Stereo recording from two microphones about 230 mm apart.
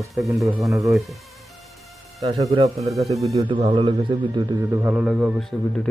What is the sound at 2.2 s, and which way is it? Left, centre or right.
A man's voice, right.